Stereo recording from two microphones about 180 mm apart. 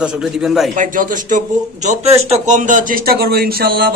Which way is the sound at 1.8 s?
35° right (ahead or behind).